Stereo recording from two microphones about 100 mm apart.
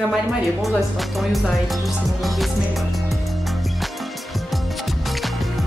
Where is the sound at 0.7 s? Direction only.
Centre (ahead or behind).